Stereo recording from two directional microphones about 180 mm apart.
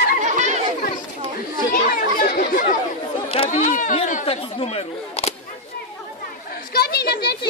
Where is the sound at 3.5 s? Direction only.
45° left (ahead or behind).